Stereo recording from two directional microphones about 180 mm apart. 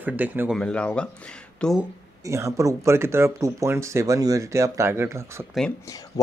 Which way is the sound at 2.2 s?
15° right (ahead or behind).